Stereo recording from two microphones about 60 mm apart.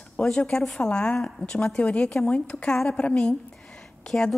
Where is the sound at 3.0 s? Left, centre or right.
Centre.